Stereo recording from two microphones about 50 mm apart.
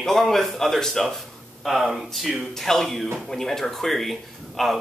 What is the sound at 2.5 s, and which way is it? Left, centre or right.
Speech, centre.